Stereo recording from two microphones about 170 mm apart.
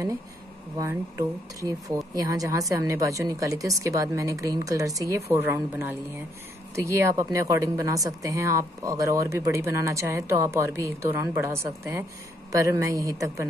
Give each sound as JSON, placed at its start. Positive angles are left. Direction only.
{"t": 0.7, "sound": "a woman's voice", "side_deg": -20}